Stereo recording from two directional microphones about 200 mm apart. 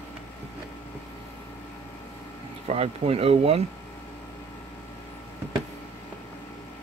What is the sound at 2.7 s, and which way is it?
Speech, 30° right (ahead or behind).